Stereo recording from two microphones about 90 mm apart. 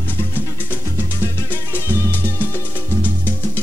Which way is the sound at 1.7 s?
30° left (ahead or behind).